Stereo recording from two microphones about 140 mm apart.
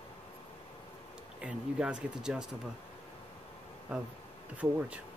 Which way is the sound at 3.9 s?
10° right (ahead or behind).